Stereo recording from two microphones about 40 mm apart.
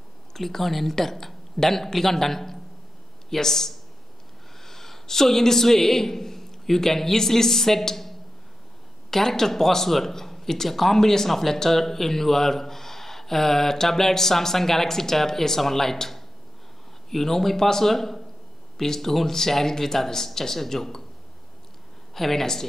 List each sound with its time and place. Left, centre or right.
0.3 s a man's voice: centre
22.1 s speech: centre